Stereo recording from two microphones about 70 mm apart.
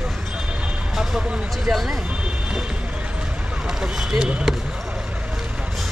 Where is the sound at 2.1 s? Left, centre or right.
Centre.